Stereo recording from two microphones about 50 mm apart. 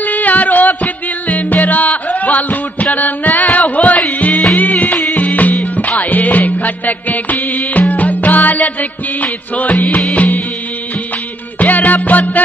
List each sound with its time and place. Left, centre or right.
0.0 s music: left
11.6 s music: left